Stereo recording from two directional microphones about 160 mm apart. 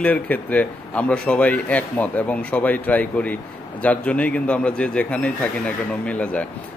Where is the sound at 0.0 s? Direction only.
10° left (ahead or behind).